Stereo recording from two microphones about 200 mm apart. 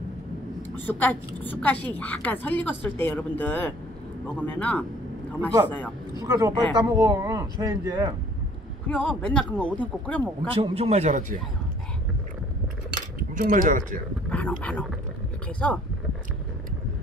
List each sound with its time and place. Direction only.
0.6 s a woman's voice: 10° left (ahead or behind)
6.2 s speech: 20° right (ahead or behind)
8.8 s a woman's voice: 5° left (ahead or behind)
10.5 s speech: 30° right (ahead or behind)
13.3 s speech: 40° right (ahead or behind)
14.3 s a woman's voice: 5° left (ahead or behind)